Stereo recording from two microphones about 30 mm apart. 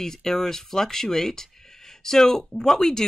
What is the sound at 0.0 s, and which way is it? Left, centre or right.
Speech, centre.